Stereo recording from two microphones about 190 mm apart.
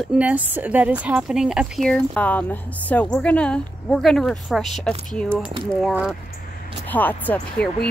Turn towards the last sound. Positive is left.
turn(degrees=5)  # may be behind; listen again after turning